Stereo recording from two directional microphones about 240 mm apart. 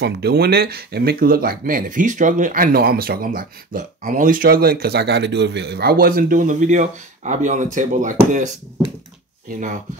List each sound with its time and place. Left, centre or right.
0.0 s speech: right